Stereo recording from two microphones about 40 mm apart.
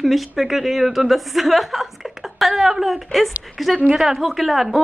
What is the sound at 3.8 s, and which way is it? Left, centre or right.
Speech, centre.